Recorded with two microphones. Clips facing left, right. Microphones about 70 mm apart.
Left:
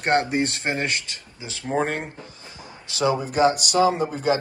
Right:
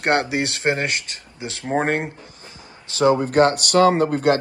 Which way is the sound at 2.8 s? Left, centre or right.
Right.